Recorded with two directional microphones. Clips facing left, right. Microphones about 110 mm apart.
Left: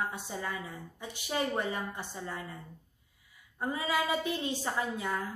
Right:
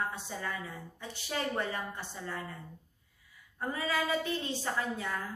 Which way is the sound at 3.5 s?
15° left (ahead or behind).